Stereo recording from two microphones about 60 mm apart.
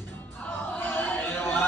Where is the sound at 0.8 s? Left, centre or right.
Left.